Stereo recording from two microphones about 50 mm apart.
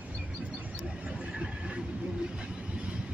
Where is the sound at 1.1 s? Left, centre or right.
Centre.